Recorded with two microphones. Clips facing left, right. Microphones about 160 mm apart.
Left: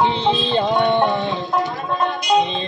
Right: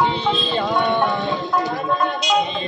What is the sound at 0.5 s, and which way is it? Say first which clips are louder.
Music: left 3 dB; 25° left (ahead or behind).